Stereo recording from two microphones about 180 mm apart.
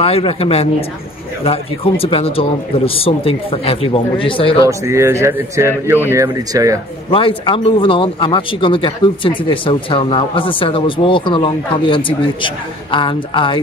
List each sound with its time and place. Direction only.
0.0 s speech: 30° left (ahead or behind)
4.6 s speech: 15° right (ahead or behind)
7.1 s speech: 30° left (ahead or behind)